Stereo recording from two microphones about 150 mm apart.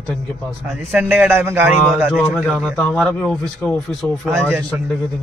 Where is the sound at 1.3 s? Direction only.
15° right (ahead or behind).